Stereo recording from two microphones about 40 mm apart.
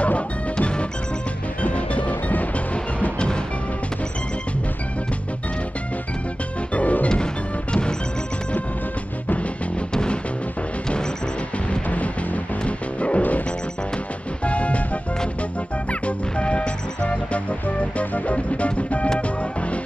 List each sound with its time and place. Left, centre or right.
0.0 s music: left
6.7 s music: left
12.6 s music: left
14.4 s music: left
15.9 s music: left